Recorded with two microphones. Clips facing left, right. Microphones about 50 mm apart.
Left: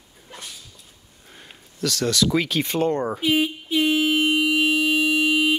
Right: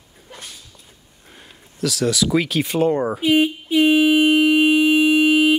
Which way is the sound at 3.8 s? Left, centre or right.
Right.